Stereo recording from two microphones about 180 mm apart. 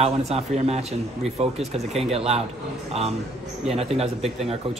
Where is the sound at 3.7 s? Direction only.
35° right (ahead or behind).